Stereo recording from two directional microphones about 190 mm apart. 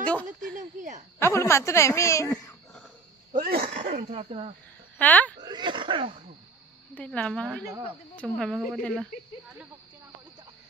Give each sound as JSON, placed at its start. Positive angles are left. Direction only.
{"t": 0.0, "sound": "speech", "side_deg": 5}
{"t": 0.6, "sound": "speech", "side_deg": -40}
{"t": 1.2, "sound": "speech", "side_deg": 15}
{"t": 3.3, "sound": "speech", "side_deg": -50}
{"t": 4.9, "sound": "speech", "side_deg": 10}
{"t": 5.4, "sound": "speech", "side_deg": -25}
{"t": 7.0, "sound": "speech", "side_deg": 5}